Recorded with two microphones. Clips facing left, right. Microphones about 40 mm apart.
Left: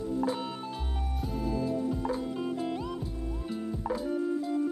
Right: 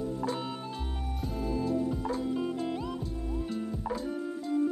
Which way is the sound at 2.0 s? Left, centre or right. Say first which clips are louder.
Even; centre.